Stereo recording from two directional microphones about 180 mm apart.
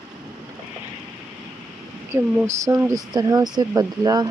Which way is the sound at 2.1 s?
15° right (ahead or behind).